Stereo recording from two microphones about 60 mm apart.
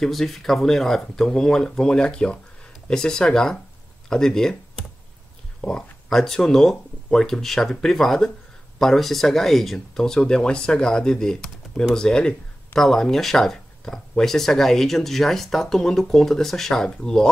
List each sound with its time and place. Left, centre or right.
0.0 s speech: centre
5.6 s speech: centre